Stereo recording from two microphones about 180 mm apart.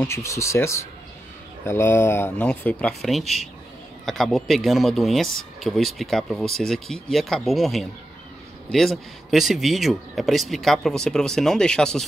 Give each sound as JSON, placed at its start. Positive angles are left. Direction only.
{"t": 0.0, "sound": "speech", "side_deg": 15}